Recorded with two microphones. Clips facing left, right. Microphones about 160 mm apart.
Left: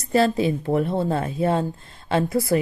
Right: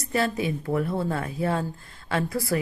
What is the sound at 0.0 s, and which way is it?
A woman's voice, 30° left (ahead or behind).